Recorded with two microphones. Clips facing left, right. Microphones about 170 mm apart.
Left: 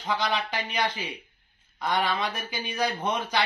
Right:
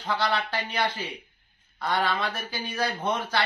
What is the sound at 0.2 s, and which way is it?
Speech, 15° left (ahead or behind).